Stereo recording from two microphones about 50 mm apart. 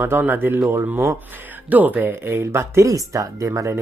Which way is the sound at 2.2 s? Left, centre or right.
Right.